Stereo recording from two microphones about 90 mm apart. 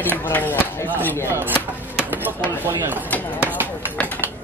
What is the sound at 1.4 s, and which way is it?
Speech, 20° right (ahead or behind).